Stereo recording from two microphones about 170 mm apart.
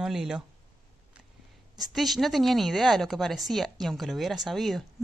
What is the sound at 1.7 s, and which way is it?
A woman's voice, centre (ahead or behind).